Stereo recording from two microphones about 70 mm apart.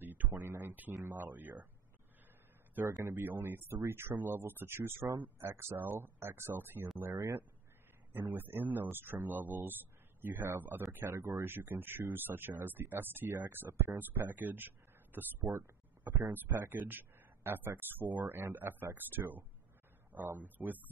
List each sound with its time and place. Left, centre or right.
0.0 s a sound: right
0.3 s speech: right
3.2 s speech: right
7.0 s speech: right
8.1 s speech: right
11.1 s speech: right
11.4 s speech: right
15.5 s a sound: right
16.5 s speech: right